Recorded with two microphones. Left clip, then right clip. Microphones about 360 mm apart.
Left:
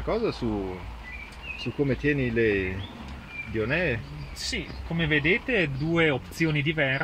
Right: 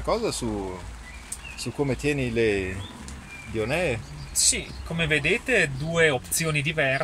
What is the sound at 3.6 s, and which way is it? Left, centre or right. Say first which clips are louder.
Speech: right 1 dB; right.